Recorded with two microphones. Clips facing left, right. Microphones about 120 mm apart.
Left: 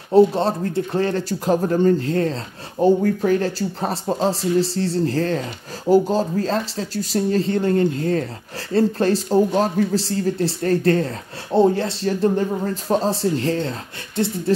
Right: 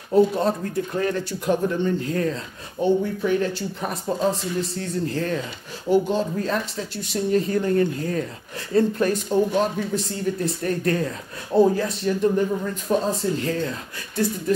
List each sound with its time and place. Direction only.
0.1 s speech: 30° left (ahead or behind)